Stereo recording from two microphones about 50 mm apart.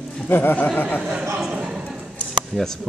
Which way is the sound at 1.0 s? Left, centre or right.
Centre.